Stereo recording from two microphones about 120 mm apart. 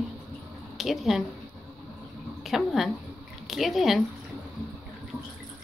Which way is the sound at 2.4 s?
Centre (ahead or behind).